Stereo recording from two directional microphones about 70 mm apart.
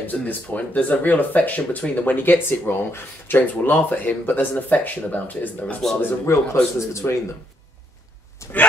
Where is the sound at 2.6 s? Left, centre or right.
Left.